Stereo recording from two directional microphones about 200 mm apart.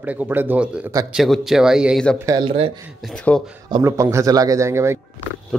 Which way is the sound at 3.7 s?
15° right (ahead or behind).